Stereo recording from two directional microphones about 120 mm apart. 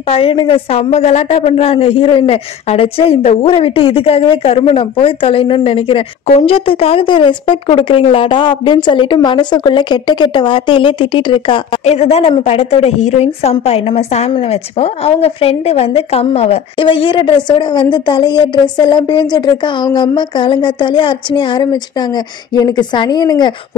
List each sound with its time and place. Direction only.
0.1 s a woman's voice: 50° left (ahead or behind)
11.8 s a woman's voice: 65° left (ahead or behind); by 23.5 s 35° left (ahead or behind)